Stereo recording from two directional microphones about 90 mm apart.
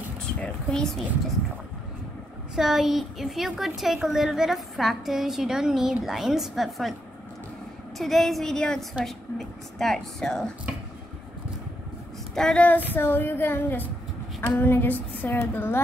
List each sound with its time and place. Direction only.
0.4 s a woman's voice: 5° left (ahead or behind)
2.5 s a woman's voice: 5° right (ahead or behind)
8.0 s a woman's voice: centre (ahead or behind)
12.4 s female singing: 5° left (ahead or behind)
12.6 s female singing: 20° left (ahead or behind)